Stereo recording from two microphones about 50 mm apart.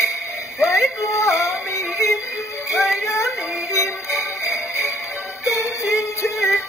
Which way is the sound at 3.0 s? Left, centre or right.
Left.